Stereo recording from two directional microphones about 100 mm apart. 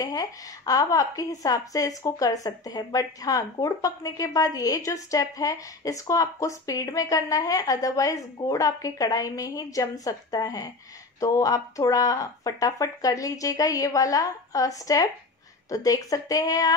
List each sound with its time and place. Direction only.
0.0 s a woman's voice: 35° left (ahead or behind)